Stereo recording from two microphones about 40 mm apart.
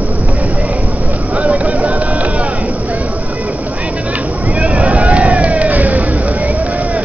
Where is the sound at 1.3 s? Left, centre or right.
Right.